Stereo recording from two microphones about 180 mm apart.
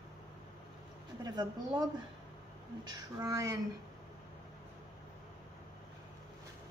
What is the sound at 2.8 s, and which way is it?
Speech, 20° right (ahead or behind).